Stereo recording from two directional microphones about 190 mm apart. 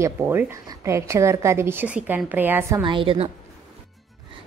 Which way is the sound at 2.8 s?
25° right (ahead or behind).